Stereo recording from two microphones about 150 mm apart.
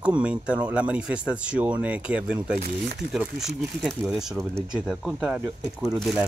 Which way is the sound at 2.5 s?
75° right (ahead or behind).